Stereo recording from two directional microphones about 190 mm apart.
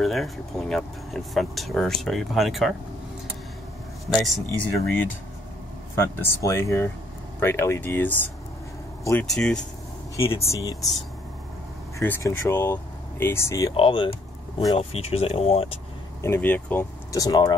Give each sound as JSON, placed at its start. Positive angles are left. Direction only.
{"t": 0.0, "sound": "speech", "side_deg": 0}
{"t": 4.0, "sound": "speech", "side_deg": 0}
{"t": 10.1, "sound": "speech", "side_deg": 15}
{"t": 12.0, "sound": "speech", "side_deg": 15}
{"t": 13.7, "sound": "speech", "side_deg": 25}
{"t": 16.2, "sound": "speech", "side_deg": 10}